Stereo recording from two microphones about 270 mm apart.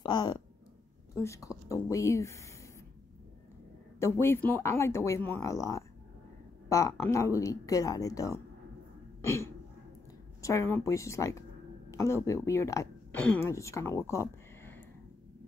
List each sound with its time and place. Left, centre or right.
0.0 s a woman's voice: centre
4.0 s a woman's voice: centre
9.2 s throat clearing: centre
10.4 s a woman's voice: centre